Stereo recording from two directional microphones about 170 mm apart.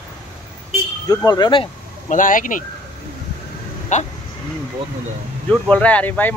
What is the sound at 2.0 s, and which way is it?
Speech, 50° left (ahead or behind).